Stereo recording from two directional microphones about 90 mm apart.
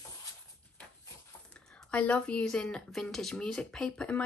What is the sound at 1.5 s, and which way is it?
A woman's voice, 15° left (ahead or behind).